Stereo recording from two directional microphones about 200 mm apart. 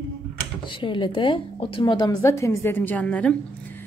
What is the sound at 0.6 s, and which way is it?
A woman's voice, 25° left (ahead or behind).